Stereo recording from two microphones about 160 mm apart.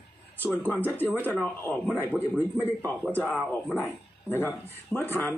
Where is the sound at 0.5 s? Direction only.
10° left (ahead or behind).